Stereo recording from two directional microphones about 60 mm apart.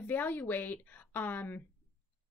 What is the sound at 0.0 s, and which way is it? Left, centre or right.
A woman's voice, left.